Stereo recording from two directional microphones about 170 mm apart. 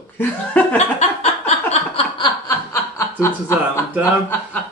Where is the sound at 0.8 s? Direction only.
40° left (ahead or behind).